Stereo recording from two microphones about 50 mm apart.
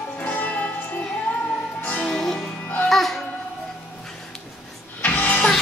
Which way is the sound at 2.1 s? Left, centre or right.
Centre.